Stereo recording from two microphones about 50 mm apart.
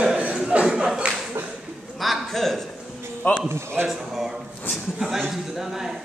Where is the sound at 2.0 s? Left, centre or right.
Centre.